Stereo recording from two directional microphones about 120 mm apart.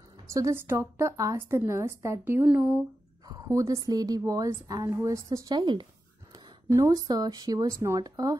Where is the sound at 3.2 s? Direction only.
30° right (ahead or behind).